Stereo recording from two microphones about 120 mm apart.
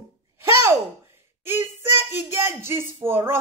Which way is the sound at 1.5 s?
20° right (ahead or behind).